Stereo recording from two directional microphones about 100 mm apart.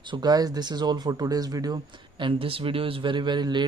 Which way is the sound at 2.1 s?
60° right (ahead or behind).